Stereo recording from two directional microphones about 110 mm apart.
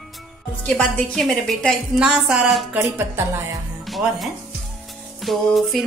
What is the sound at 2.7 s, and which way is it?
Speech, 20° right (ahead or behind).